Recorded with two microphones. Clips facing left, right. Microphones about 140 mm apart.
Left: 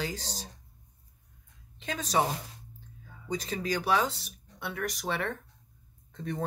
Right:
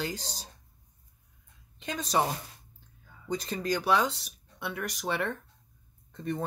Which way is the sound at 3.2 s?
Centre (ahead or behind).